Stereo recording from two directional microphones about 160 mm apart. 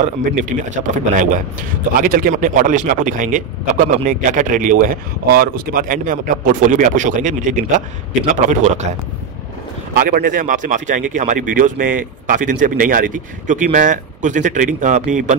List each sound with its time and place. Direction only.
0.0 s speech: 50° right (ahead or behind)
5.3 s speech: 65° right (ahead or behind); by 8.8 s 50° right (ahead or behind)
9.9 s speech: 65° right (ahead or behind)